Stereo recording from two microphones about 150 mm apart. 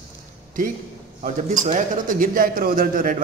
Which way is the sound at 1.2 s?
60° right (ahead or behind).